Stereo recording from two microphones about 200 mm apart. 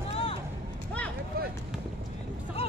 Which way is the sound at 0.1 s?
30° left (ahead or behind).